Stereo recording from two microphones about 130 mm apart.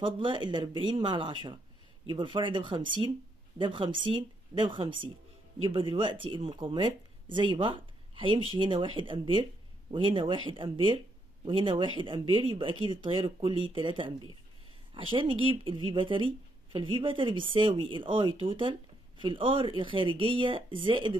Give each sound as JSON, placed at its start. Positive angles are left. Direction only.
{"t": 0.0, "sound": "speech", "side_deg": -40}